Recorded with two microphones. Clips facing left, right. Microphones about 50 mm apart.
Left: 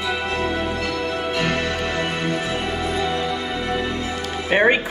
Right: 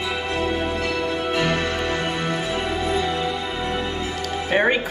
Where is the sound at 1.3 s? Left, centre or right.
Centre.